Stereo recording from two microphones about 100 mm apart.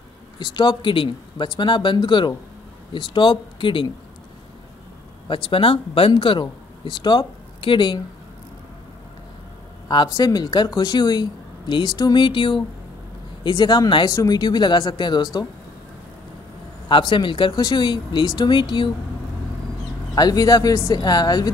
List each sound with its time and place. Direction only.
0.4 s speech: 45° left (ahead or behind)
5.3 s speech: 65° left (ahead or behind)
10.1 s speech: 40° left (ahead or behind)
16.9 s speech: 55° left (ahead or behind)
20.2 s speech: 40° left (ahead or behind)